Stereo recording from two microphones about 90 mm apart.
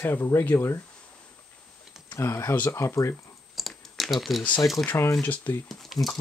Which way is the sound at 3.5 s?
Centre (ahead or behind).